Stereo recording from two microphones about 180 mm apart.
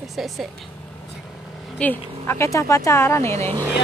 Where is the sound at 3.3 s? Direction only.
35° right (ahead or behind).